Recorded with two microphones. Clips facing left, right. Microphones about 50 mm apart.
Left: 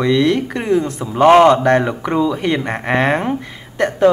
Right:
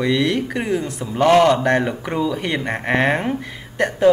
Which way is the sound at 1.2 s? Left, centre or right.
Left.